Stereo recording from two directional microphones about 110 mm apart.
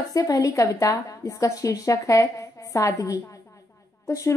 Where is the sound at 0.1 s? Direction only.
30° left (ahead or behind).